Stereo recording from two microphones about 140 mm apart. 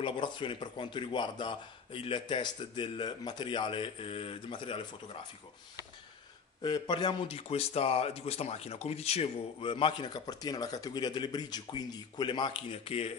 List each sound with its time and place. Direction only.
0.0 s speech: 35° left (ahead or behind)
6.6 s speech: 30° left (ahead or behind)